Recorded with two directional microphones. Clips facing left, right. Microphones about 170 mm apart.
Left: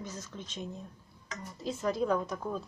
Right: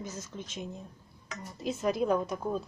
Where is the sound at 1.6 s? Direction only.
20° right (ahead or behind).